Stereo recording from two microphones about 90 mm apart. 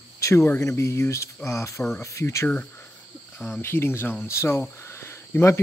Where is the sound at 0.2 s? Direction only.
30° left (ahead or behind).